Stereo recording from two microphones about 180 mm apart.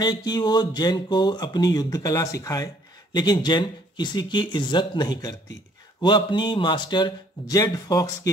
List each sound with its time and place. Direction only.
0.0 s speech: 20° left (ahead or behind)